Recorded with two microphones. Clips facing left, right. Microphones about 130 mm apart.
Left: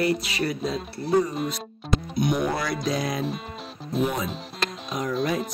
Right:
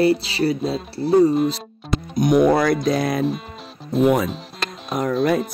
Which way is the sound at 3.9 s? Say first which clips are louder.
Right 7 dB; centre (ahead or behind).